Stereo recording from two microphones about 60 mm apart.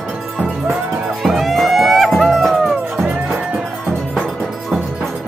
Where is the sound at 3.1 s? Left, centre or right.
Right.